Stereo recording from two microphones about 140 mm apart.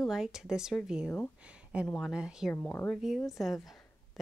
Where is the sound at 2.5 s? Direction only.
15° left (ahead or behind).